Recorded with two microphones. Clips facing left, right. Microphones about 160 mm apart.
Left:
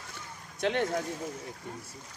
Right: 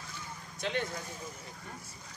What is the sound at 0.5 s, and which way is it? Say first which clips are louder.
Speech: left 7 dB; 65° left (ahead or behind).